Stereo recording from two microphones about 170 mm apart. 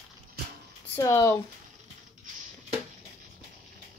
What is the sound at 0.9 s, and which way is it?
Speech, 15° left (ahead or behind).